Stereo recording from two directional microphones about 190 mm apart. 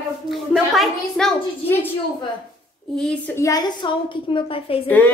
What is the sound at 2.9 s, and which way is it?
A woman's voice, 5° left (ahead or behind).